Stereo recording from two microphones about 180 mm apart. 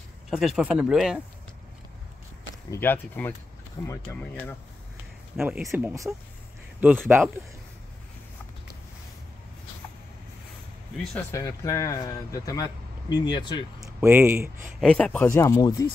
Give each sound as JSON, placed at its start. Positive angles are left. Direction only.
{"t": 0.3, "sound": "speech", "side_deg": 0}
{"t": 2.7, "sound": "speech", "side_deg": 10}
{"t": 5.4, "sound": "speech", "side_deg": -5}
{"t": 11.1, "sound": "speech", "side_deg": 15}
{"t": 13.8, "sound": "speech", "side_deg": -10}
{"t": 14.8, "sound": "speech", "side_deg": 5}
{"t": 15.2, "sound": "speech", "side_deg": 15}